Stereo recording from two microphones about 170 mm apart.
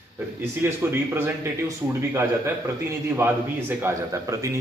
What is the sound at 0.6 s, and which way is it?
Speech, 15° right (ahead or behind).